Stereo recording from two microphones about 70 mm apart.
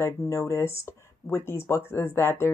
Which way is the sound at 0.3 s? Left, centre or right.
Left.